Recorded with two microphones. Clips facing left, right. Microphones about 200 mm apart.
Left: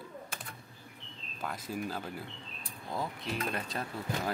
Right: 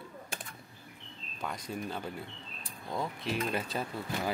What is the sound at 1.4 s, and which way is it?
Speech, 5° left (ahead or behind).